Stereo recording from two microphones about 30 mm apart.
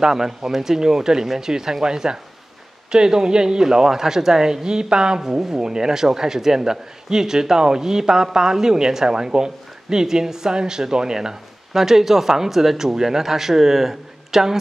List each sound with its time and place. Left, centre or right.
0.0 s a man's voice: centre